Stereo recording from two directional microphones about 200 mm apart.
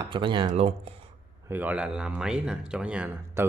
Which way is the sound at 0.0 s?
25° right (ahead or behind).